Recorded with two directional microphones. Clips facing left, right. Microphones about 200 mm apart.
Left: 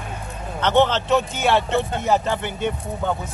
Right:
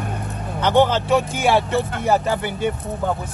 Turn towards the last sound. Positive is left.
turn(degrees=-5)  # may be behind; listen again after turning